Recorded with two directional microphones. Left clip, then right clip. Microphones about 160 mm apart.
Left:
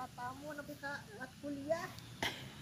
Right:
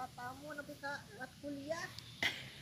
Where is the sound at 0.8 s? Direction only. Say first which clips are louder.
Even; 40° right (ahead or behind).